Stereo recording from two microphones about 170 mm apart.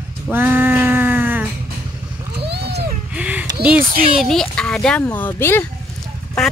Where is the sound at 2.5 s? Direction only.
75° right (ahead or behind).